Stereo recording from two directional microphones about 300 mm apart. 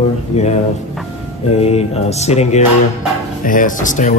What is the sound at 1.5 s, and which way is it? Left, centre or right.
Speech, left.